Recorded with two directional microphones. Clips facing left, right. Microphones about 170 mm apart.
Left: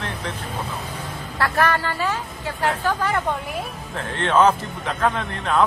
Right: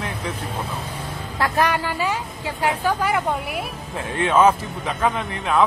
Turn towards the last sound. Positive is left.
turn(degrees=-5)  # may be behind; listen again after turning